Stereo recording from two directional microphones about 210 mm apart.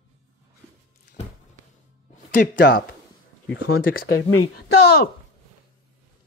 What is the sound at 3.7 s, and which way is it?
Speech, 45° left (ahead or behind).